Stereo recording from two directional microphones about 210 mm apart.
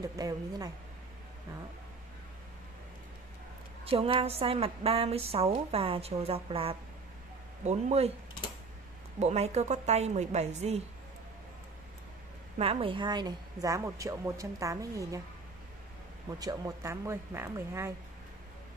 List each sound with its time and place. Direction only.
0.0 s a woman's voice: 15° right (ahead or behind)
3.8 s a woman's voice: 25° right (ahead or behind)
9.2 s a woman's voice: 30° right (ahead or behind)
12.5 s a woman's voice: 25° right (ahead or behind)
16.3 s a woman's voice: 15° right (ahead or behind)